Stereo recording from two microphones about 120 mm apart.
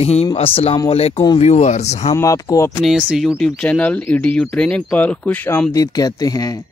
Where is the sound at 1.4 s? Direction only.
70° left (ahead or behind).